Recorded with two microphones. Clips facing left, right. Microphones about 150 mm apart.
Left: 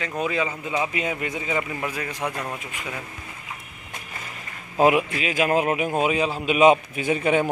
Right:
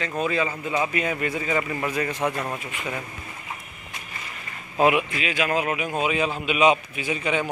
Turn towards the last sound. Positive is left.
turn(degrees=50)  # may be behind; listen again after turning